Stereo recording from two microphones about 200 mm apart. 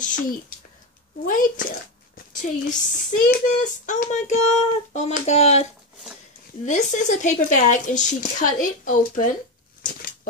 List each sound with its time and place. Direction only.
0.0 s speech: 40° left (ahead or behind)
2.6 s child singing: 40° left (ahead or behind)